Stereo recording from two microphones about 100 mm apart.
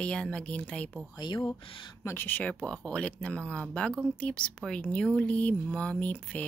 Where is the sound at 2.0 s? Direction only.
25° left (ahead or behind).